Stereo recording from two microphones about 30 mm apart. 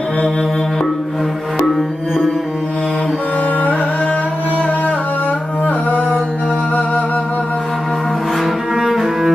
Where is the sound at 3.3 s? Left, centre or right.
Left.